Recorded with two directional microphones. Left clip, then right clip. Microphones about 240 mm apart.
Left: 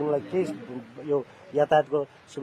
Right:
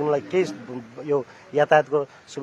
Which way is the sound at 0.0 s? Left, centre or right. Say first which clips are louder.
Right 4 dB; centre.